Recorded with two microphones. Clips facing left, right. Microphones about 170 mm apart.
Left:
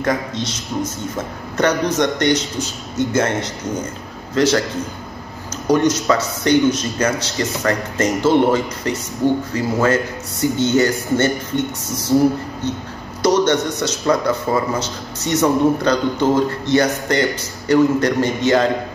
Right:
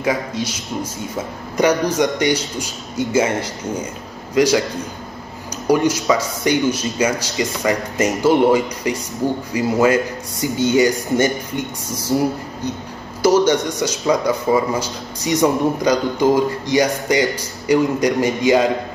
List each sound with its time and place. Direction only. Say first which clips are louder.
0.0 s speech: even; 10° right (ahead or behind)
5.7 s speech: even; 10° right (ahead or behind)
13.2 s speech: right 1 dB; 10° right (ahead or behind)